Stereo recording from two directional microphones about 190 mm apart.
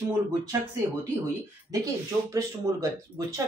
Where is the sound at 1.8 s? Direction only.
20° right (ahead or behind).